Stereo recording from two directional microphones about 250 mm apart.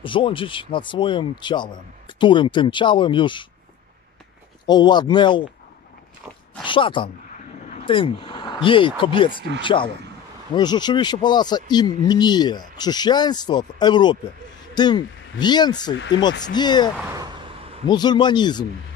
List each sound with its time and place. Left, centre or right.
0.0 s speech: centre
4.6 s speech: centre
6.6 s speech: centre
17.0 s a sound: centre
17.8 s speech: centre